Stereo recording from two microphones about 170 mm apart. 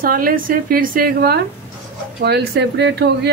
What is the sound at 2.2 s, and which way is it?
Speech, 80° right.